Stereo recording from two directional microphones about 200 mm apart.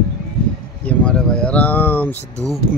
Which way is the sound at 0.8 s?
5° left (ahead or behind).